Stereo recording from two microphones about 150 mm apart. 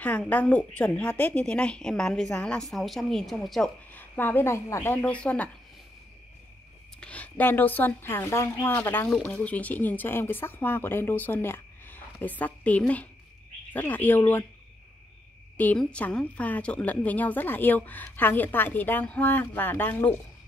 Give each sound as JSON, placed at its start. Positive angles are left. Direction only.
{"t": 0.0, "sound": "speech", "side_deg": 10}
{"t": 3.9, "sound": "a woman's voice", "side_deg": 15}
{"t": 7.0, "sound": "a woman's voice", "side_deg": 10}
{"t": 15.5, "sound": "a woman's voice", "side_deg": 10}